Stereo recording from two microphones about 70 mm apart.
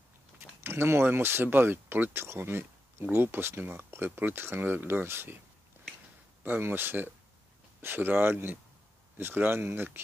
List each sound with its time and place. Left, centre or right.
0.4 s speech: right
6.4 s speech: right